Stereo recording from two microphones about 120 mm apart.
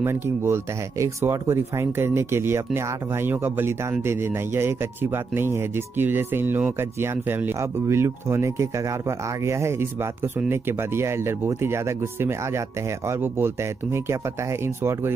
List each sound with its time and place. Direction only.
0.0 s speech: 20° right (ahead or behind)